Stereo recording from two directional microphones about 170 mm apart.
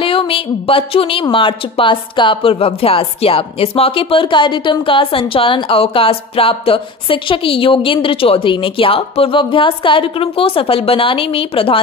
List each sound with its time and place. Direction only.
0.0 s a woman's voice: 30° left (ahead or behind)